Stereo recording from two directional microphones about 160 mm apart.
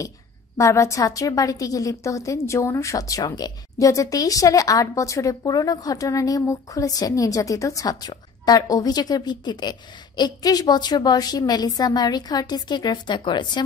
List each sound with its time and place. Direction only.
0.6 s a woman's voice: 20° left (ahead or behind)